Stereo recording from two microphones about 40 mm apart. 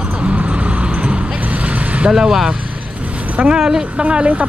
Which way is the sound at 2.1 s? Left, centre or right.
Centre.